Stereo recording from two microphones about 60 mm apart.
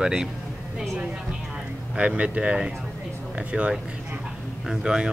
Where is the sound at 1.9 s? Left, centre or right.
Right.